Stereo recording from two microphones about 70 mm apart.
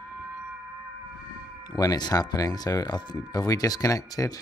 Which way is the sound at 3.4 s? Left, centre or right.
Left.